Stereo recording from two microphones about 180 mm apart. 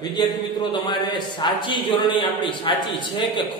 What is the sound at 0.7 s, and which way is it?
A man's voice, 25° left (ahead or behind).